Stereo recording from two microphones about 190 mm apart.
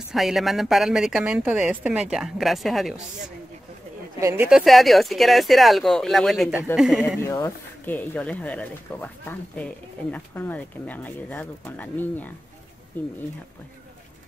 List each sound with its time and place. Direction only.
0.1 s a woman's voice: centre (ahead or behind)
4.2 s speech: 15° right (ahead or behind)
4.5 s a woman's voice: centre (ahead or behind)
7.2 s speech: 15° left (ahead or behind)